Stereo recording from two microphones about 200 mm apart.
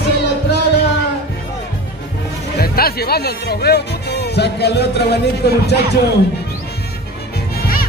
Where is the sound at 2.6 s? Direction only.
50° left (ahead or behind).